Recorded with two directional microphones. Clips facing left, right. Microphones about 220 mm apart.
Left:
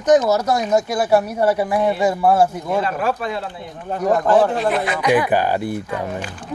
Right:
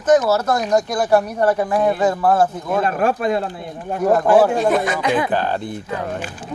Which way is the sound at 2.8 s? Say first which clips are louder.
Right 3 dB; 50° right (ahead or behind).